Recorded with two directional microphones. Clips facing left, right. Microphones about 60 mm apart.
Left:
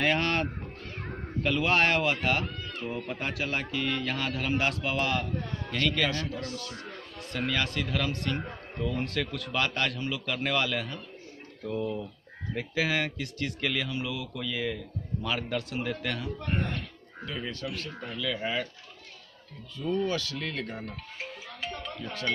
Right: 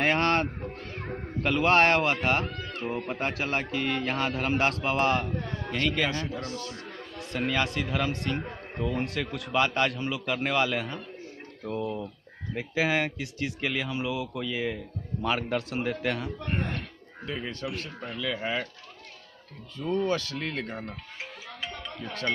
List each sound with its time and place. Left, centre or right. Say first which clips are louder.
0.0 s a sound: right 3 dB; right
1.4 s a man's voice: right 3 dB; right; by 14.8 s centre
15.2 s a man's voice: right 4 dB; right
19.9 s a man's voice: right 2 dB; right